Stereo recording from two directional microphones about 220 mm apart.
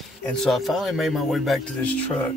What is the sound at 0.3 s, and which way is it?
Speech, centre (ahead or behind).